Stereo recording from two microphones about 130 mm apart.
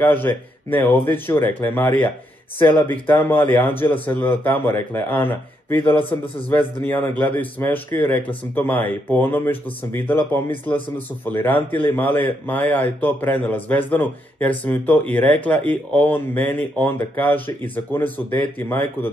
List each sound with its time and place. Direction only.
0.0 s a man's voice: 15° left (ahead or behind)